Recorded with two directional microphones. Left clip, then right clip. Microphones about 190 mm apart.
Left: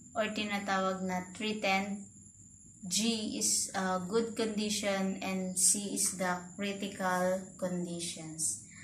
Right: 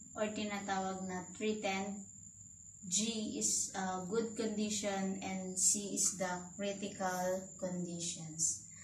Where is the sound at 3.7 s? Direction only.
50° left (ahead or behind).